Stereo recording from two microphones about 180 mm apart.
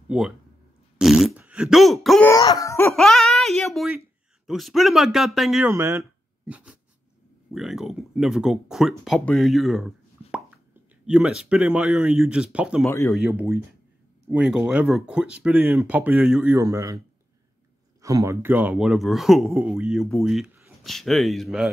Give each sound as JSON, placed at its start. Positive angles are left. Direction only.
{"t": 0.9, "sound": "fart", "side_deg": 0}
{"t": 2.4, "sound": "laughter", "side_deg": 20}
{"t": 2.9, "sound": "speech", "side_deg": 0}
{"t": 5.7, "sound": "speech", "side_deg": -15}
{"t": 11.1, "sound": "speech", "side_deg": -5}
{"t": 12.8, "sound": "speech", "side_deg": 15}
{"t": 14.3, "sound": "speech", "side_deg": -5}
{"t": 16.5, "sound": "speech", "side_deg": -15}
{"t": 18.0, "sound": "speech", "side_deg": -15}